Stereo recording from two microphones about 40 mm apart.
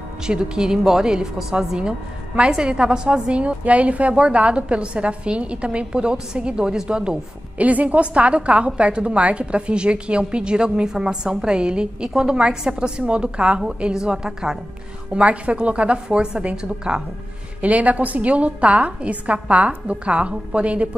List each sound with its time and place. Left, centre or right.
0.3 s speech: right
1.8 s a woman's voice: right
7.5 s a woman's voice: right; by 14.6 s centre
15.1 s a woman's voice: right
17.6 s a woman's voice: right